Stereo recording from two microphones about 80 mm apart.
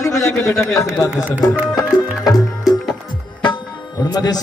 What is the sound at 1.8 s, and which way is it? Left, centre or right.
Music, left.